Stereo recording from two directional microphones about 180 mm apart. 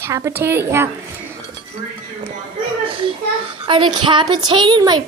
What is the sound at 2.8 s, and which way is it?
Children playing, 30° right (ahead or behind).